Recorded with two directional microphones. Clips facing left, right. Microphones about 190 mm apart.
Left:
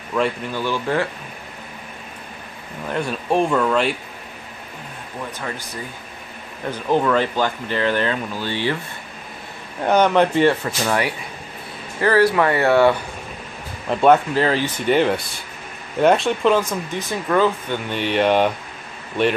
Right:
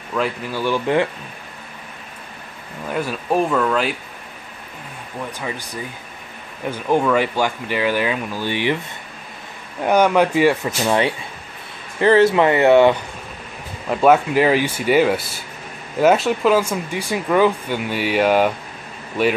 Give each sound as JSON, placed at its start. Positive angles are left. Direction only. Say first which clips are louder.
{"t": 0.1, "sound": "speech", "louder": "left 1 dB", "side_deg": -5}
{"t": 2.9, "sound": "speech", "louder": "even", "side_deg": -5}
{"t": 6.6, "sound": "speech", "louder": "right 1 dB", "side_deg": -10}
{"t": 9.8, "sound": "speech", "louder": "right 1 dB", "side_deg": -10}
{"t": 10.9, "sound": "speech", "louder": "right 4 dB", "side_deg": -25}
{"t": 13.8, "sound": "speech", "louder": "even", "side_deg": -5}